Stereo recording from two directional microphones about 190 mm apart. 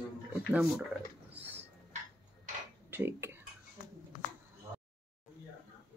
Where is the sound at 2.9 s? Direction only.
10° right (ahead or behind).